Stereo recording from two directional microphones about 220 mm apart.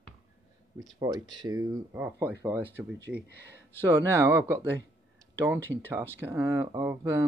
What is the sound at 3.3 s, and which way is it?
Speech, 50° right (ahead or behind).